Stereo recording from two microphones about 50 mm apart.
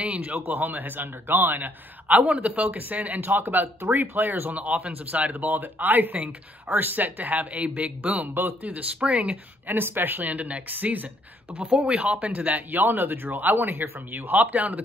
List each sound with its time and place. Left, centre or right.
0.2 s a man's voice: right
8.4 s a man's voice: right
8.7 s speech: right
9.7 s a man's voice: right